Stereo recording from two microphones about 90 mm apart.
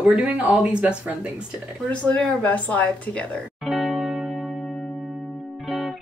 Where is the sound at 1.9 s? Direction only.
15° left (ahead or behind).